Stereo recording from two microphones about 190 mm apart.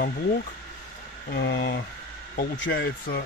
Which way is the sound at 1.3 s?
60° left (ahead or behind).